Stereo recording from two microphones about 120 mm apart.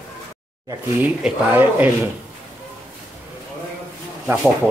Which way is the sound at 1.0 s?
15° right (ahead or behind).